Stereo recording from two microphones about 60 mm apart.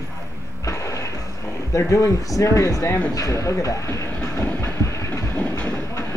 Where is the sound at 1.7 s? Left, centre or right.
Left.